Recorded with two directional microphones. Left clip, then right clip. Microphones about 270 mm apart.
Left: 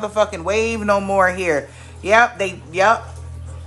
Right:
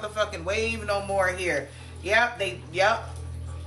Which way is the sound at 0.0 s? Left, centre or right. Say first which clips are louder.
Left 9 dB; centre.